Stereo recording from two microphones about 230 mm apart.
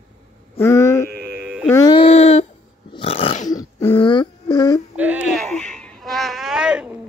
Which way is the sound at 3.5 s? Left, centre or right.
Centre.